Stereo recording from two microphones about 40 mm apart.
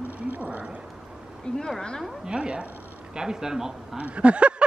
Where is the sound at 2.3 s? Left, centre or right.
Right.